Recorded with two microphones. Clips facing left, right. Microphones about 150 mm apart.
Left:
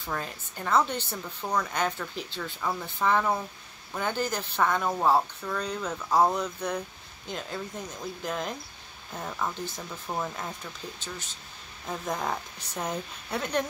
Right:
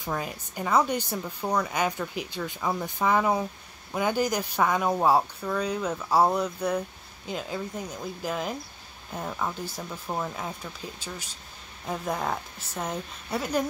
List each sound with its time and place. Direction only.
0.0 s a woman's voice: 10° right (ahead or behind)
11.8 s a woman's voice: 5° right (ahead or behind)